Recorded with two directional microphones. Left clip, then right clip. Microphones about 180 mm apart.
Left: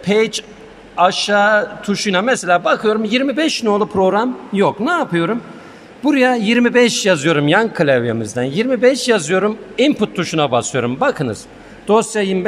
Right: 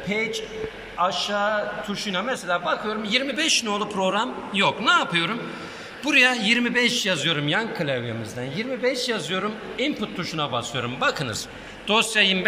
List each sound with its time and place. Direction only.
0.0 s a man's voice: 65° left (ahead or behind)
11.9 s a man's voice: 40° left (ahead or behind)